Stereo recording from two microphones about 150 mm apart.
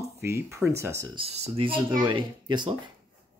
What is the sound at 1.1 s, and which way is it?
Speech, 45° right (ahead or behind).